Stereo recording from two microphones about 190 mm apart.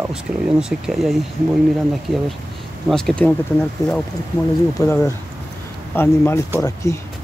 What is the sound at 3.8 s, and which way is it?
Speech, 20° left (ahead or behind).